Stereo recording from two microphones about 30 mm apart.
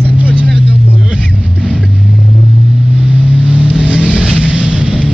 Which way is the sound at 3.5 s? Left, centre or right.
Right.